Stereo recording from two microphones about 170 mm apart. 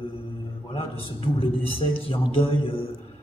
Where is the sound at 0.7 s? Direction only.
30° left (ahead or behind).